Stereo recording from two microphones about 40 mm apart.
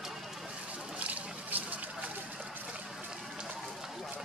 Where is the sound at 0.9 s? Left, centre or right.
Right.